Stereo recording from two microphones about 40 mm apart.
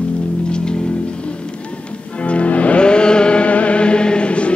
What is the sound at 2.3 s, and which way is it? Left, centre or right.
Music, left.